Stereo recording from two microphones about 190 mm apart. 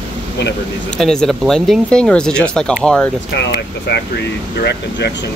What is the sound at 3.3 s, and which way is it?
Speech, 65° left (ahead or behind).